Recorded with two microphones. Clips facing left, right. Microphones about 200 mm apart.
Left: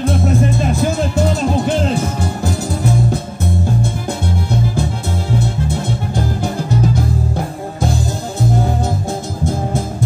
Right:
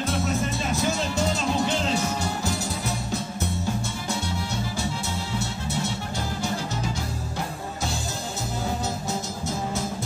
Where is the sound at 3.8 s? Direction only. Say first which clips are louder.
Left 9 dB; 55° left (ahead or behind).